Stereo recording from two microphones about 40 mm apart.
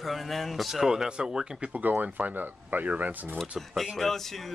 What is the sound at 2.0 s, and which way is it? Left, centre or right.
Speech, right.